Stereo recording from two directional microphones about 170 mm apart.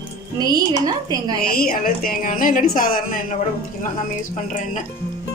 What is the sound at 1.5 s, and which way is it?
A woman's voice, 60° left (ahead or behind).